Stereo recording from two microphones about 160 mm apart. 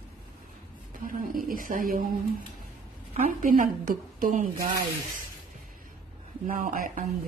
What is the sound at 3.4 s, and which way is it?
Speech, 60° right (ahead or behind).